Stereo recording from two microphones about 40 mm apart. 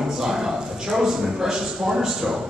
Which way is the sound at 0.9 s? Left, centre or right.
Centre.